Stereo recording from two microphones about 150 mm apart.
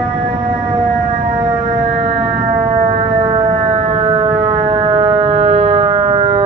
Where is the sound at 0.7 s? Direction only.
40° right (ahead or behind).